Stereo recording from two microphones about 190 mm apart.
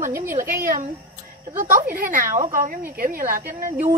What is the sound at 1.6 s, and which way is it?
Speech, 45° right (ahead or behind).